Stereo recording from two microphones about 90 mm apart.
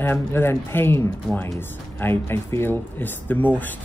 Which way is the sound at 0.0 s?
25° left (ahead or behind).